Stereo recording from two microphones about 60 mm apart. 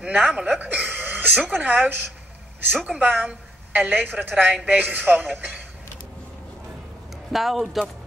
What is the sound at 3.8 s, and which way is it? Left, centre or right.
A woman's voice, right.